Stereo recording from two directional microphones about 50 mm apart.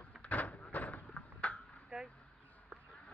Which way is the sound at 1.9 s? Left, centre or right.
Centre.